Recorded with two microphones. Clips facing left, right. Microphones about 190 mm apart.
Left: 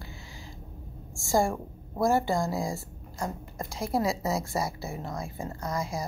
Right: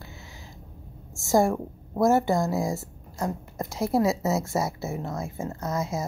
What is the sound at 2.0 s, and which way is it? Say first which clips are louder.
Speech: right 4 dB; 20° right (ahead or behind).